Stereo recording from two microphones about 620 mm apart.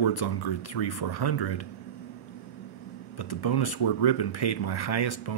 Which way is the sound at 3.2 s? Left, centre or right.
Left.